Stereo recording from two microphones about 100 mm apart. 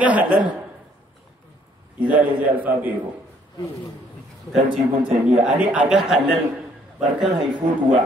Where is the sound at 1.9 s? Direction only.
15° right (ahead or behind).